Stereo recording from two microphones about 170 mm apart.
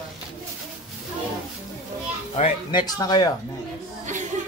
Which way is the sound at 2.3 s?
30° left (ahead or behind).